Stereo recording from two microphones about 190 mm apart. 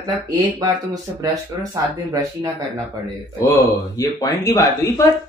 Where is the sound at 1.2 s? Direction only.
20° right (ahead or behind).